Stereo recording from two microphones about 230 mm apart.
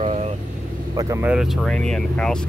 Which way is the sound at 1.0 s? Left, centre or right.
Centre.